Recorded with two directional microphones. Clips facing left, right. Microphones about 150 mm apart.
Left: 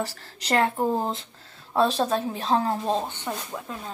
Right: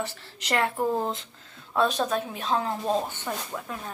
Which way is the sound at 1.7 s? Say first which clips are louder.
Left 2 dB; 30° left (ahead or behind).